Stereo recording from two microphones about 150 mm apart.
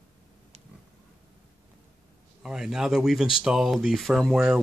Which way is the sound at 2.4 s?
5° right (ahead or behind).